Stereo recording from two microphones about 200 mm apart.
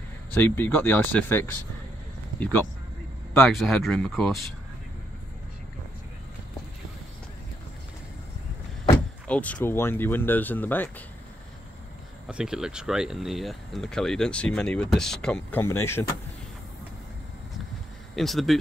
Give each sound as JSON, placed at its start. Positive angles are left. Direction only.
{"t": 0.3, "sound": "speech", "side_deg": 10}
{"t": 3.4, "sound": "speech", "side_deg": 0}
{"t": 9.3, "sound": "speech", "side_deg": 5}
{"t": 12.3, "sound": "speech", "side_deg": -5}
{"t": 18.1, "sound": "speech", "side_deg": 0}